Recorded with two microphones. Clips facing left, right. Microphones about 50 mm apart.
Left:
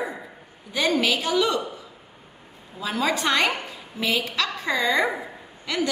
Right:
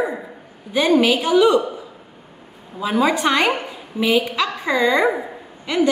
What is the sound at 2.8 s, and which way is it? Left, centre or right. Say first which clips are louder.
A woman's voice: right 6 dB; centre.